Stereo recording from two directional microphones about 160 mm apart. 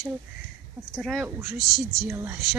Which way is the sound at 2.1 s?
15° right (ahead or behind).